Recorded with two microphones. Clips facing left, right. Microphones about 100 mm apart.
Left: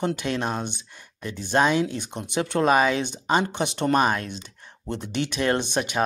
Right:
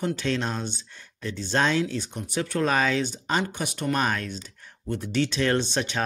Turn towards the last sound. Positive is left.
turn(degrees=15)  # may be behind; listen again after turning